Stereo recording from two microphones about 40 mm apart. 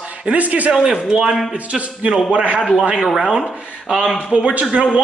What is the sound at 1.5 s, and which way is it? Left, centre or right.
A man's voice, right.